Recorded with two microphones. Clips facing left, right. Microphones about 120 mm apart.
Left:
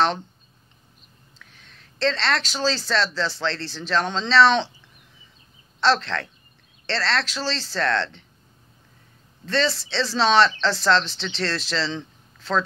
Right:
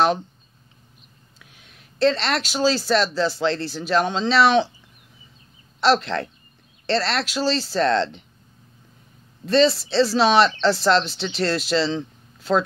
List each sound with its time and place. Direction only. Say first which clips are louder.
1.4 s speech: right 1 dB; 10° right (ahead or behind)
5.8 s speech: right 2 dB; 10° right (ahead or behind)
9.8 s speech: right 5 dB; 10° right (ahead or behind)